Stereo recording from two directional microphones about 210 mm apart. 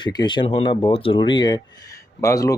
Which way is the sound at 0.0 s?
20° left (ahead or behind).